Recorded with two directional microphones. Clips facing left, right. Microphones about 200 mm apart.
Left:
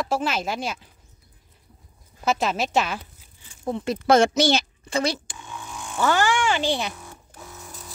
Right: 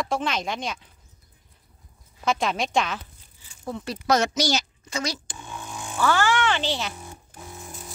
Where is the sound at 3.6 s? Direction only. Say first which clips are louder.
Left 6 dB; 25° left (ahead or behind).